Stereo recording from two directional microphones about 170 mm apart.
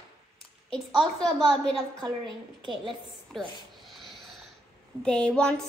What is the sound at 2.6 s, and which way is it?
Speech, 30° right (ahead or behind).